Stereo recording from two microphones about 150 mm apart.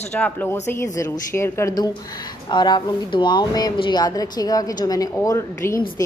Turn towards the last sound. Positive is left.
turn(degrees=25)  # may be behind; listen again after turning